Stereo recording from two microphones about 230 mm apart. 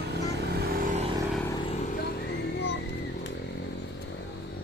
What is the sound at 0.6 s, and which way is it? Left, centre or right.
Vehicle, right.